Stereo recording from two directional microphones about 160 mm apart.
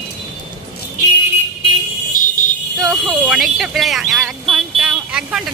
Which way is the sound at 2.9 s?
Centre (ahead or behind).